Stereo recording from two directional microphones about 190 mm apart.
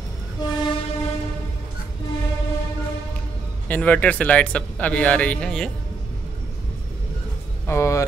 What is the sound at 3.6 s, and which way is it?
Speech, 10° left (ahead or behind).